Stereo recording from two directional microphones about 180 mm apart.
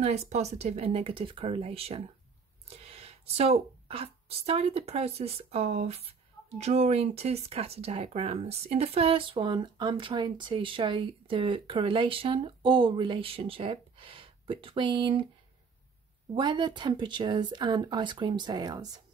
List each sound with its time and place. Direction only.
0.0 s a woman's voice: 35° right (ahead or behind)
16.3 s speech: 25° right (ahead or behind)